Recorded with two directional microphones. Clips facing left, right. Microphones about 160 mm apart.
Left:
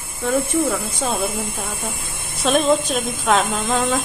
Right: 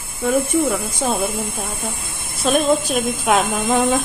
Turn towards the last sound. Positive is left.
turn(degrees=-10)  # may be behind; listen again after turning